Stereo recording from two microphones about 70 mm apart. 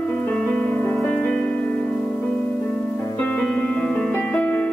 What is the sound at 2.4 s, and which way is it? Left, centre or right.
Music, left.